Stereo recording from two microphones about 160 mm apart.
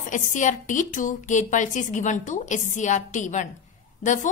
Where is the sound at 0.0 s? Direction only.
55° left (ahead or behind).